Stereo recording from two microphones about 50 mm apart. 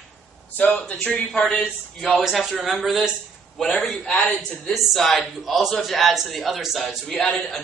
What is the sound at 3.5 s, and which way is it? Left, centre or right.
A man's voice, centre.